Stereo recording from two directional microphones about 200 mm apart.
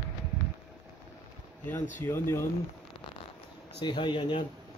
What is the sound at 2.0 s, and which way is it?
Speech, 10° left (ahead or behind).